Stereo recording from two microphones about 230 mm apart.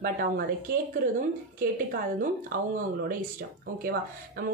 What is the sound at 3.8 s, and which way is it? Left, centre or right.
Speech, right.